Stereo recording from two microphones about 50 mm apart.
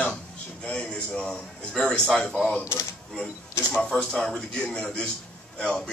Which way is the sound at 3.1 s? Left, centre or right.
Centre.